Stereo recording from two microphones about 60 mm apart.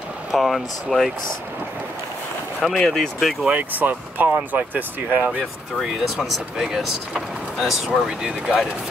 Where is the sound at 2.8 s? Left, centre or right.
Centre.